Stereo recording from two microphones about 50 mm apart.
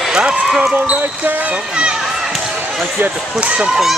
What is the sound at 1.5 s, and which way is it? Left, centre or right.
Speech, right.